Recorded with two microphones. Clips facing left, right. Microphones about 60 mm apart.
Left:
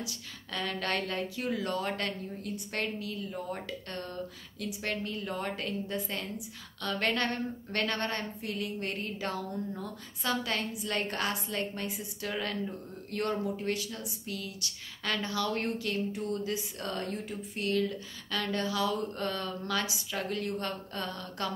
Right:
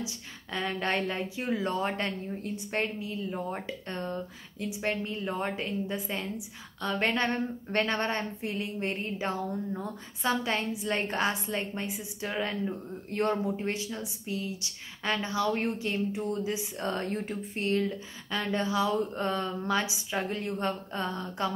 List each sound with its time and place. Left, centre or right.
0.0 s a woman's voice: right